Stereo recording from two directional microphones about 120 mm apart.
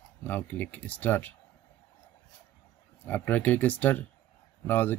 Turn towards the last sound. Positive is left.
turn(degrees=15)  # may be behind; listen again after turning